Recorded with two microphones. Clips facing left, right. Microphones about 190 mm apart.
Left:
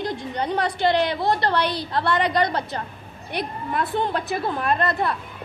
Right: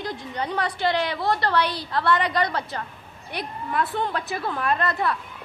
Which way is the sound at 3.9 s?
25° left (ahead or behind).